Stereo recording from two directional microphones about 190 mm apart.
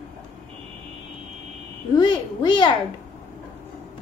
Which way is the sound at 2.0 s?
25° left (ahead or behind).